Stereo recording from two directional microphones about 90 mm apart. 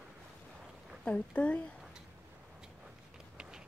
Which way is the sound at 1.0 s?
15° left (ahead or behind).